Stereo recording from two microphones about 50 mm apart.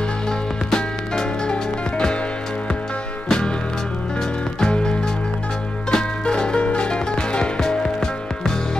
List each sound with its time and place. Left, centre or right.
0.7 s music: centre
3.3 s music: centre
4.6 s music: centre